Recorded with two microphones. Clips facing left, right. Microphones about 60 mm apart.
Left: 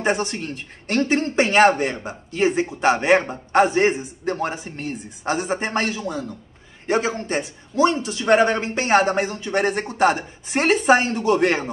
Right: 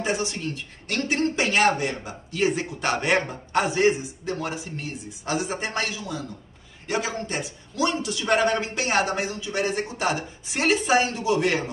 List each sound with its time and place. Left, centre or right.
0.0 s a man's voice: left